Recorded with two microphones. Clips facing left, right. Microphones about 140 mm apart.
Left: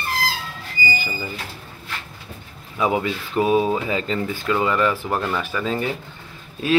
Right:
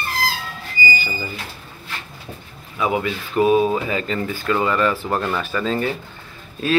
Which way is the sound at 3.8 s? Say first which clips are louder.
Even; 20° left (ahead or behind).